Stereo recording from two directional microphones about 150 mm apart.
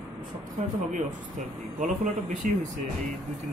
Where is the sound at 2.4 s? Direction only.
60° right (ahead or behind).